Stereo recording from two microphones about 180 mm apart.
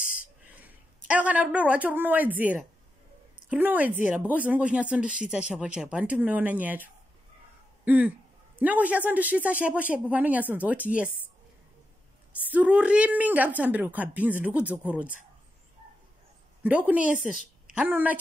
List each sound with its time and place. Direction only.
0.0 s bird: 50° left (ahead or behind)
0.6 s speech: 10° right (ahead or behind)
12.4 s speech: 10° right (ahead or behind)
16.6 s speech: 10° right (ahead or behind)